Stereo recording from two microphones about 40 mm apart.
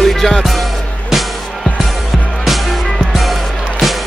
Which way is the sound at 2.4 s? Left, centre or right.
Centre.